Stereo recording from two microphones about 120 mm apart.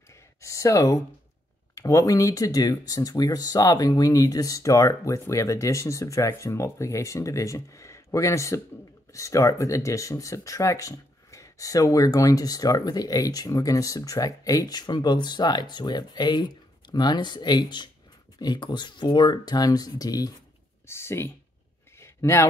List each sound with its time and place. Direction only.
0.4 s speech: 25° left (ahead or behind)
20.8 s speech: 20° left (ahead or behind)
22.0 s a sound: 25° left (ahead or behind)